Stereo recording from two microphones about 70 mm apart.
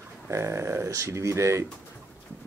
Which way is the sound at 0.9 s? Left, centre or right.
Right.